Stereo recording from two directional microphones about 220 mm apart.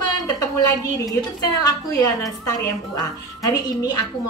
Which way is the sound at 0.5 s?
15° left (ahead or behind).